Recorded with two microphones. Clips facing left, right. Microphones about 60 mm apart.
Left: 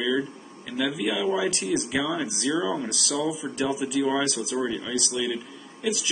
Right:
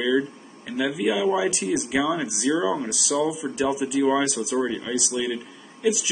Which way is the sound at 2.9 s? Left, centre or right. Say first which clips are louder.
Right 3 dB; centre.